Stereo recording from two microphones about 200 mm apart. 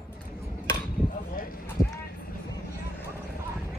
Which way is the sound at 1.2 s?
45° left (ahead or behind).